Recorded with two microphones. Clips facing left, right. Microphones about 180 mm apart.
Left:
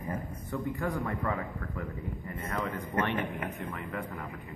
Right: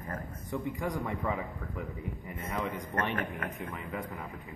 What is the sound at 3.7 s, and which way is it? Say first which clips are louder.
Speech: left 1 dB; 5° right (ahead or behind).